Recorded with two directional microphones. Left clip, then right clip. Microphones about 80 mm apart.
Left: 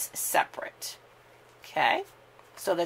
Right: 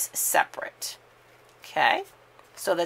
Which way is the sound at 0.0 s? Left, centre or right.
Right.